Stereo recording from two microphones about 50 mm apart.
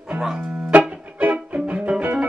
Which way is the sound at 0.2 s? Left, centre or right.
Centre.